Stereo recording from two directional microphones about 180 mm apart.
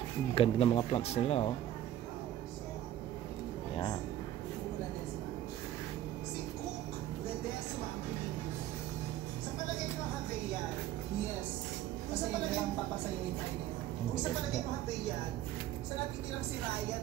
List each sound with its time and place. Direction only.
0.3 s speech: 30° left (ahead or behind)